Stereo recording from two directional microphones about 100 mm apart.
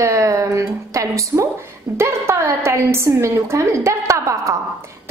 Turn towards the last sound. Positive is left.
turn(degrees=-30)  # may be behind; listen again after turning